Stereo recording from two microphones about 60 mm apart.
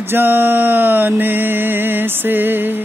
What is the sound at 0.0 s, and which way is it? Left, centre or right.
Mantra, right.